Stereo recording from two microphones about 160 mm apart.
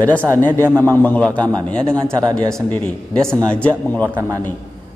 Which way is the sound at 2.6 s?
10° left (ahead or behind).